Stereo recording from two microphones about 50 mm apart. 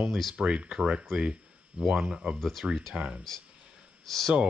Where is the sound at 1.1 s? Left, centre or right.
Centre.